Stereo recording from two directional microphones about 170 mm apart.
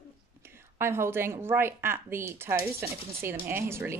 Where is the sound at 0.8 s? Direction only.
15° right (ahead or behind).